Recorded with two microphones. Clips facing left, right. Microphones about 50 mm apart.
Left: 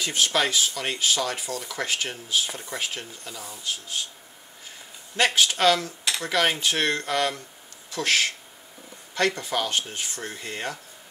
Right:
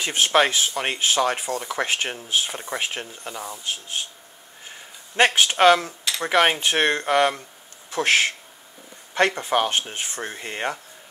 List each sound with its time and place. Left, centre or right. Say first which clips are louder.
0.0 s speech: right 5 dB; right